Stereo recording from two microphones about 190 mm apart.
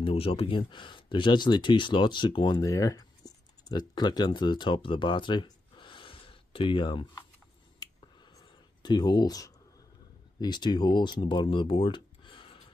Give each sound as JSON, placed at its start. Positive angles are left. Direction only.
{"t": 0.0, "sound": "speech", "side_deg": 30}
{"t": 7.8, "sound": "finger snapping", "side_deg": 20}
{"t": 8.4, "sound": "a sound", "side_deg": 20}
{"t": 10.4, "sound": "speech", "side_deg": 25}